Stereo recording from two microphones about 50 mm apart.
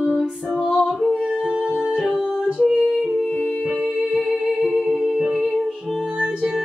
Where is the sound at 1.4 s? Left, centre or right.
Centre.